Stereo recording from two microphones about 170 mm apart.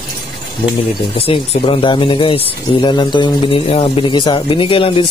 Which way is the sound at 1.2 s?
35° left (ahead or behind).